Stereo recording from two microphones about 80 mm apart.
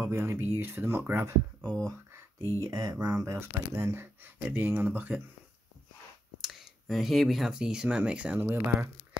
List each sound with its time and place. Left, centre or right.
0.0 s speech: right
1.6 s speech: centre
1.9 s a sound: right
2.6 s speech: right
3.3 s speech: right
6.4 s speech: centre